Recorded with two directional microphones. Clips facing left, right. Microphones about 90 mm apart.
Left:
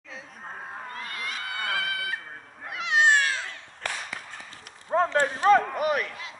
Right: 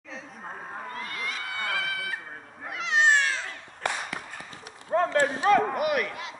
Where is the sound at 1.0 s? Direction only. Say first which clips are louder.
Right 1 dB; 15° left (ahead or behind).